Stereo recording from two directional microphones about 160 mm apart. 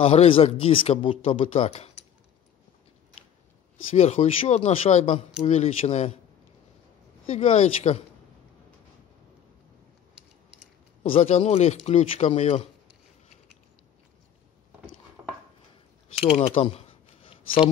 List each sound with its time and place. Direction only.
0.0 s speech: 40° left (ahead or behind)
3.9 s speech: 45° left (ahead or behind)
7.2 s speech: 45° left (ahead or behind)
11.0 s speech: 40° left (ahead or behind)
15.2 s chopping: 15° right (ahead or behind)
16.3 s speech: 40° left (ahead or behind)